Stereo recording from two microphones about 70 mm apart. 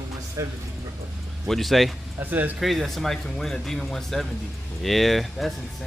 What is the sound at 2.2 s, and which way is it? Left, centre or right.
Speech, right.